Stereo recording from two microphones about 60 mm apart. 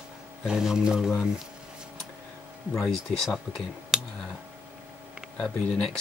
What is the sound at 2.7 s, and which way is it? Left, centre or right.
Speech, centre.